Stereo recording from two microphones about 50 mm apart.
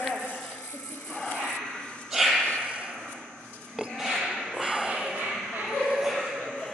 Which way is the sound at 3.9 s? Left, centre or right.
Centre.